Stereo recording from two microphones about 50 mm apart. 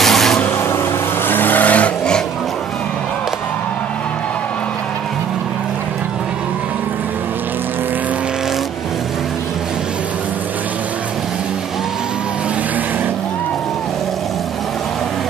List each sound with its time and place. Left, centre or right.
0.0 s vehicle: centre
1.2 s vehicle: left